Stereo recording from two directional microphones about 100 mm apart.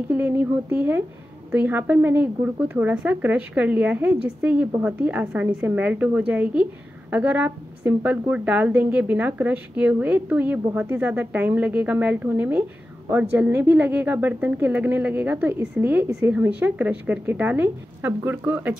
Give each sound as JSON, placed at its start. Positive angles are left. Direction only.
{"t": 0.1, "sound": "a woman's voice", "side_deg": -15}